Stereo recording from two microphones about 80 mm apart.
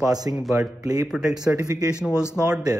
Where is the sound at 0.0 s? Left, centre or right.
Right.